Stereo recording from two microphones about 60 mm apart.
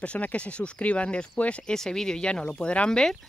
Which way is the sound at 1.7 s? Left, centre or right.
Centre.